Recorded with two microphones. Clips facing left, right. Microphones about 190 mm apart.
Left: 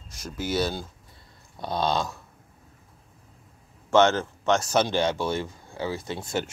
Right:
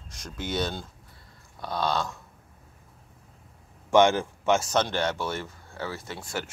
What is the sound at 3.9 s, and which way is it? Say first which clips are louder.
Speech: even; 15° right (ahead or behind).